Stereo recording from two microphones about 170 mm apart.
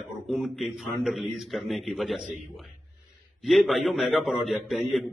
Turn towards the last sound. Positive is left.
turn(degrees=0)  # may be behind; listen again after turning